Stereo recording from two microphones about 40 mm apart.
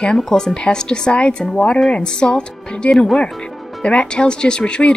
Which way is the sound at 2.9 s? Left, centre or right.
Centre.